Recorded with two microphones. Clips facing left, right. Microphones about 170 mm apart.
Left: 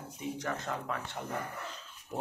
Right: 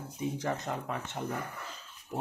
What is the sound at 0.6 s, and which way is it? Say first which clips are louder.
Speech: right 1 dB; 20° right (ahead or behind).